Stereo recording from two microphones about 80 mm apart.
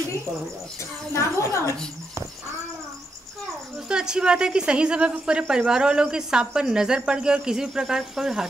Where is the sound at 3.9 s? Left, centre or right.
Centre.